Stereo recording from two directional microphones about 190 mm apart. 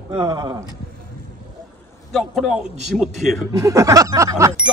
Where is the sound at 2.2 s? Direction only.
Centre (ahead or behind).